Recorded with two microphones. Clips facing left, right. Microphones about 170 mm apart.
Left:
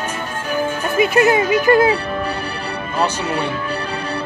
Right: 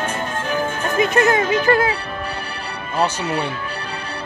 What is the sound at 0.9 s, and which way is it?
Speech, 10° left (ahead or behind).